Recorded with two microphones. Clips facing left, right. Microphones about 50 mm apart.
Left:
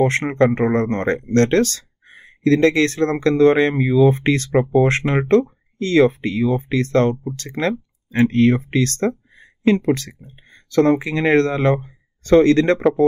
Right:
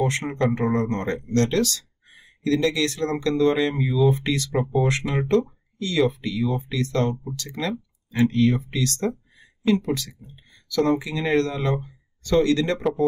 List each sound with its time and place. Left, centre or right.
0.0 s speech: left